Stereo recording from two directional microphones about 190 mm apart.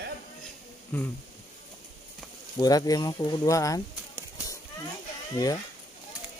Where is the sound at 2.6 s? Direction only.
20° left (ahead or behind).